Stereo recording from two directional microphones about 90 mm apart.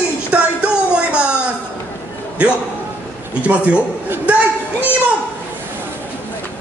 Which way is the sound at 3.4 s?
15° right (ahead or behind).